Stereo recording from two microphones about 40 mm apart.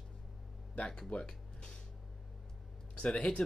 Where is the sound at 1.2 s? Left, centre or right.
Left.